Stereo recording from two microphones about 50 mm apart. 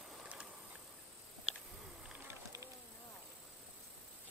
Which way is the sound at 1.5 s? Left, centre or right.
Right.